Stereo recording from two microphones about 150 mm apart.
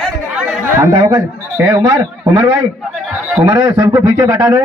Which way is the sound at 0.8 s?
20° right (ahead or behind).